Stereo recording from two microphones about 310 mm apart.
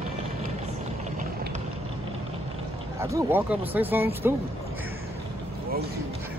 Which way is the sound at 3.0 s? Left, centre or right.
Centre.